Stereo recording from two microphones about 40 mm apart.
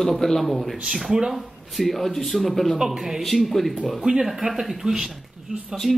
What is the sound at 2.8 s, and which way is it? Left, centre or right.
Speech, centre.